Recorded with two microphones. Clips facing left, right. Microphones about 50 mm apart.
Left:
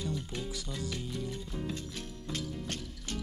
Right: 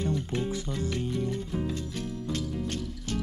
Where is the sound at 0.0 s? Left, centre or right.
Right.